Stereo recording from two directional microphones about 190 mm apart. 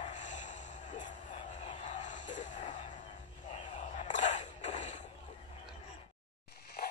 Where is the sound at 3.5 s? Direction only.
40° left (ahead or behind).